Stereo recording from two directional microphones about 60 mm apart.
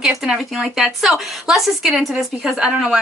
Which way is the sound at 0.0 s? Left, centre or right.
Centre.